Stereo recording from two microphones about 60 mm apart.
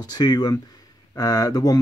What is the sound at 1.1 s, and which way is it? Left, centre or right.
Speech, left.